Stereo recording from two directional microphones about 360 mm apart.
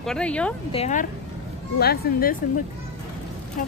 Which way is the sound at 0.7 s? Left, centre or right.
Centre.